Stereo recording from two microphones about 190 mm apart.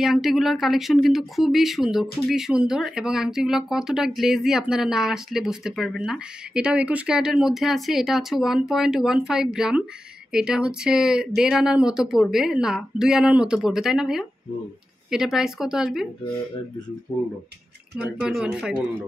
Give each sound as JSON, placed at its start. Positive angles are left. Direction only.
{"t": 0.0, "sound": "speech", "side_deg": 0}
{"t": 18.2, "sound": "speech", "side_deg": -5}